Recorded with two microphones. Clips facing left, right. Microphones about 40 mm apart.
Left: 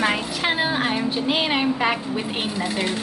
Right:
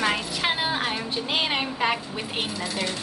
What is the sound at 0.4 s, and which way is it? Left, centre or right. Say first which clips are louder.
A woman's voice: left 5 dB; centre.